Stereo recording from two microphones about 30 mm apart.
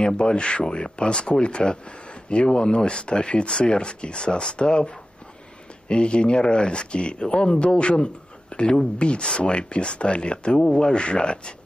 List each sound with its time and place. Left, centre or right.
0.0 s speech: left